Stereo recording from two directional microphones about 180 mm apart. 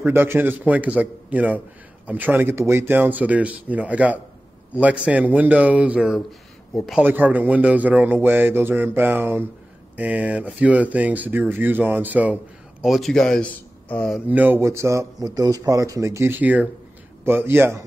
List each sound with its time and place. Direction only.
0.0 s speech: 10° right (ahead or behind); by 14.2 s 5° left (ahead or behind)
14.3 s speech: 10° right (ahead or behind)